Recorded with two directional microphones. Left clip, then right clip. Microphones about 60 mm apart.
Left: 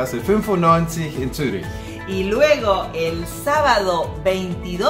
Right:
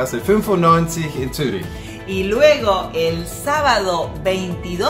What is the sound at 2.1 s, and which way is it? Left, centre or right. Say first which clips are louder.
Speech: right 3 dB; left.